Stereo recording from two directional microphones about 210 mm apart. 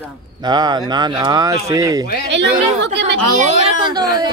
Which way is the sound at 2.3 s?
55° right (ahead or behind).